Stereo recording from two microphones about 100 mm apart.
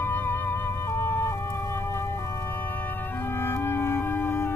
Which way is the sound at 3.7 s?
25° left (ahead or behind).